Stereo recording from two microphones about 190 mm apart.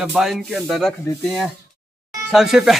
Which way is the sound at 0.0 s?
Centre (ahead or behind).